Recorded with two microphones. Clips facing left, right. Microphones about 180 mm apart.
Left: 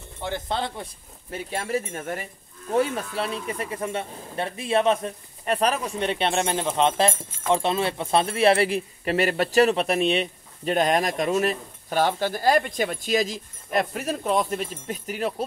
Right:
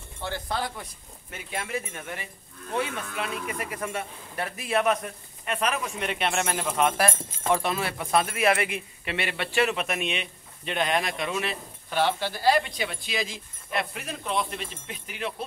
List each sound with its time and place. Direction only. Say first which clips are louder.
0.2 s speech: left 3 dB; 20° left (ahead or behind)
1.3 s speech: left 5 dB; 35° left (ahead or behind)